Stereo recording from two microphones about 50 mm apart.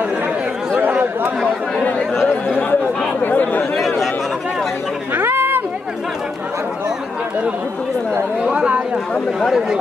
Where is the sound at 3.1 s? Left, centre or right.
Left.